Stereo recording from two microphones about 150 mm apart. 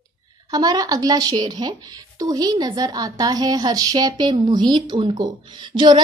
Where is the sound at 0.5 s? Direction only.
25° right (ahead or behind).